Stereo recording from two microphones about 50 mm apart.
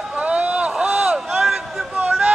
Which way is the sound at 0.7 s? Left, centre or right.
Centre.